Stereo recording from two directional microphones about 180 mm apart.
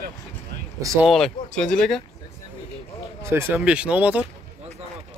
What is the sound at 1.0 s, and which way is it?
Speech, centre (ahead or behind).